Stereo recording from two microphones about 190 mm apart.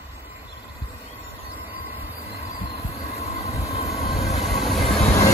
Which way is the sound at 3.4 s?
15° left (ahead or behind).